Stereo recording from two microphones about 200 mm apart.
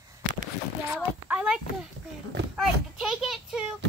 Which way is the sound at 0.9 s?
5° right (ahead or behind).